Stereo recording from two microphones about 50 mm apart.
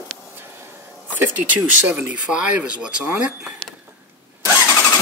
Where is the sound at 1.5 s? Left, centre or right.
Right.